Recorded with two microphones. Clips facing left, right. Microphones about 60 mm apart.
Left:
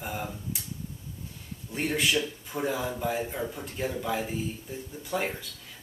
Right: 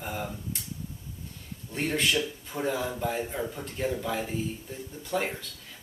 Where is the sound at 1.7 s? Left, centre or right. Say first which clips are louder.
Even; centre.